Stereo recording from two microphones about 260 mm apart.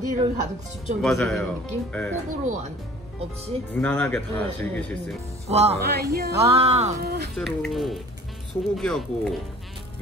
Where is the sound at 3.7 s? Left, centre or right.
Centre.